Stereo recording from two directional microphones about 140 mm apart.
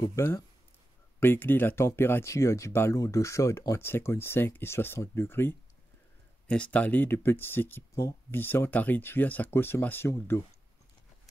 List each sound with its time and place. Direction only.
0.1 s speech: 20° left (ahead or behind)